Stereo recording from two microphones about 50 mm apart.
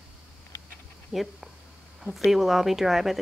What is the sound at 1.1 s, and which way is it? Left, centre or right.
Speech, centre.